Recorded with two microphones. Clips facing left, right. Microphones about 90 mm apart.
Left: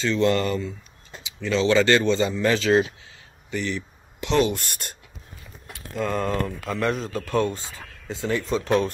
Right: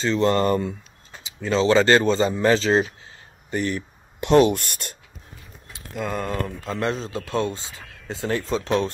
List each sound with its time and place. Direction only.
0.0 s speech: 35° right (ahead or behind)
1.2 s speech: 35° right (ahead or behind)
3.4 s speech: 45° right (ahead or behind)
5.9 s speech: 5° right (ahead or behind)
6.7 s speech: 25° right (ahead or behind)